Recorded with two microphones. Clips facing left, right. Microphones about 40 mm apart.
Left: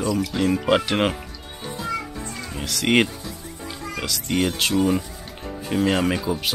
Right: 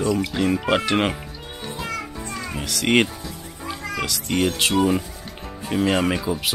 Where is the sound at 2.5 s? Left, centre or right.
Centre.